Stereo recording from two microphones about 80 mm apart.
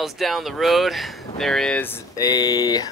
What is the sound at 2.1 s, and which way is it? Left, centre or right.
Speech, left.